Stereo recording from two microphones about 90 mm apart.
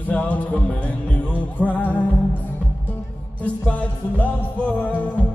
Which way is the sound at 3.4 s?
15° left (ahead or behind).